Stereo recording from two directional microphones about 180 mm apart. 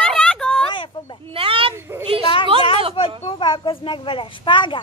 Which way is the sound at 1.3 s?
30° right (ahead or behind).